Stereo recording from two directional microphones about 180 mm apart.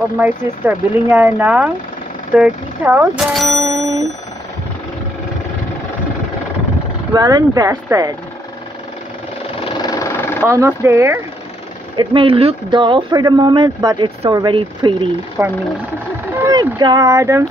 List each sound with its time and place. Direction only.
0.2 s speech: 10° right (ahead or behind)
3.8 s speech: 15° right (ahead or behind)
7.2 s speech: 20° right (ahead or behind)
9.7 s vehicle: 20° left (ahead or behind)
10.5 s speech: 15° right (ahead or behind)
12.0 s speech: 30° right (ahead or behind)
15.4 s speech: 10° right (ahead or behind)
16.4 s speech: 20° right (ahead or behind)